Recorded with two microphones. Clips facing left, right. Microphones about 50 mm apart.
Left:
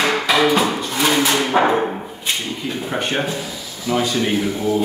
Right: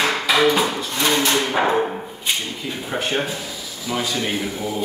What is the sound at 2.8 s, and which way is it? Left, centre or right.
Speech, centre.